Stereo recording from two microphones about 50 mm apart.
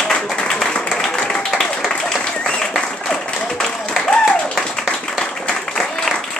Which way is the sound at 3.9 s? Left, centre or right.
Centre.